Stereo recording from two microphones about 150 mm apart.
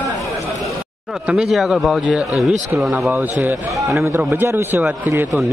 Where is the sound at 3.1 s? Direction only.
15° right (ahead or behind).